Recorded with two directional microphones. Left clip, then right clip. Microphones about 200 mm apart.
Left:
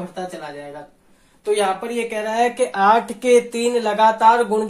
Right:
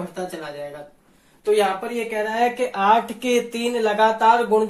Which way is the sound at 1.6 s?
35° left (ahead or behind).